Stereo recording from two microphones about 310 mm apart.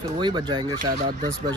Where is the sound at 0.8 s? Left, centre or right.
Right.